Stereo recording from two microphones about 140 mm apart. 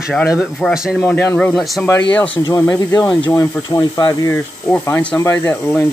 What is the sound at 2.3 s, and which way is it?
Speech, 30° left (ahead or behind).